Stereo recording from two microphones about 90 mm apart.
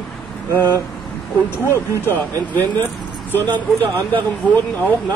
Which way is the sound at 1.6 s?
25° left (ahead or behind).